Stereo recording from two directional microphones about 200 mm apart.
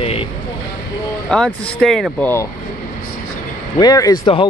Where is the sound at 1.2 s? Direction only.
Centre (ahead or behind).